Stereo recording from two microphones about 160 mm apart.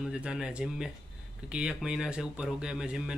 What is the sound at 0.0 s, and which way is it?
Speech, 5° right (ahead or behind).